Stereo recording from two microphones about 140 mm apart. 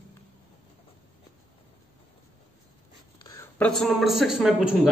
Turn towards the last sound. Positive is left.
turn(degrees=-5)  # may be behind; listen again after turning